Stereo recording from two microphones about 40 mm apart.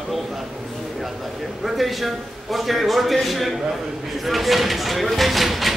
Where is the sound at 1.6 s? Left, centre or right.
Centre.